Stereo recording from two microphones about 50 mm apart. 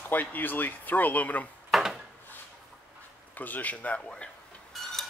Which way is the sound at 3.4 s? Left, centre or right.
Left.